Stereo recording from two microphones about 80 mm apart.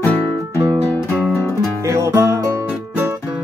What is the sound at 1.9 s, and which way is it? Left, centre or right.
Music, right.